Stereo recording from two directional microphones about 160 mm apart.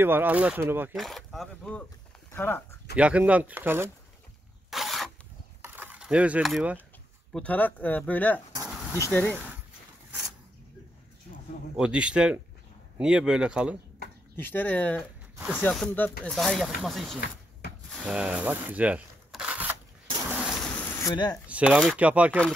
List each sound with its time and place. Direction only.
0.0 s speech: 15° right (ahead or behind)
0.9 s speech: centre (ahead or behind)
3.0 s speech: 10° right (ahead or behind)
4.6 s a sound: centre (ahead or behind)
5.6 s a sound: 10° right (ahead or behind)
7.3 s speech: 10° left (ahead or behind)
11.7 s speech: 5° right (ahead or behind)
14.3 s speech: 10° left (ahead or behind); by 19.7 s 10° right (ahead or behind)
20.2 s a sound: 5° right (ahead or behind)
21.0 s speech: 25° left (ahead or behind)
21.5 s speech: 5° right (ahead or behind)